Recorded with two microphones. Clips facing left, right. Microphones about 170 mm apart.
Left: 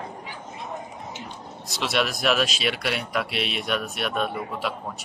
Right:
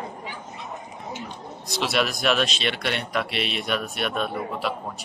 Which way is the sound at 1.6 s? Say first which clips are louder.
Right 1 dB; centre (ahead or behind).